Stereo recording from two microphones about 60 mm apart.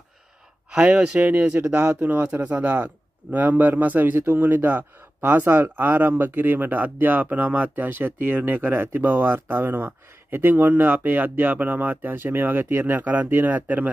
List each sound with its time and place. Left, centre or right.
0.7 s speech: centre